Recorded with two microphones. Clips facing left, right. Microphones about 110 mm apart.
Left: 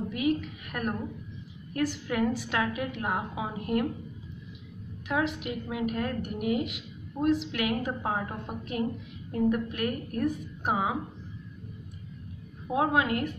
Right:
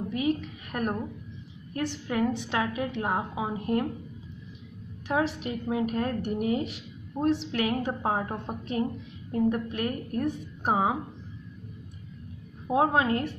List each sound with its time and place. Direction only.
0.1 s a woman's voice: 30° right (ahead or behind)
5.0 s a woman's voice: 35° right (ahead or behind)
12.6 s a woman's voice: 30° right (ahead or behind)